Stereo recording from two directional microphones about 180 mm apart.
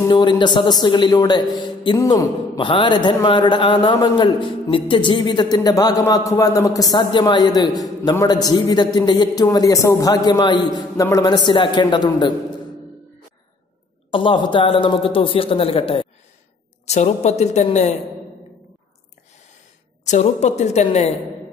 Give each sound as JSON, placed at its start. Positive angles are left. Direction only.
{"t": 0.0, "sound": "speech", "side_deg": 25}
{"t": 14.1, "sound": "a woman's voice", "side_deg": 25}
{"t": 20.1, "sound": "a woman's voice", "side_deg": 40}